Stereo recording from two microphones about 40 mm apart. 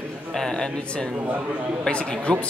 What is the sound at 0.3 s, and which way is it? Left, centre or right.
Speech, centre.